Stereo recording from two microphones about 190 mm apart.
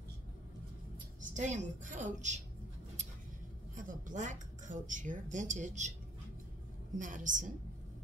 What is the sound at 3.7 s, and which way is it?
Speech, 45° right (ahead or behind).